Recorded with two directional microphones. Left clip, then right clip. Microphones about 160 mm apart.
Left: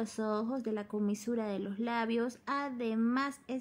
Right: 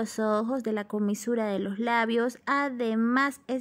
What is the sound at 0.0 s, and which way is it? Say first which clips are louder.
A woman's voice: right 8 dB; 35° right (ahead or behind).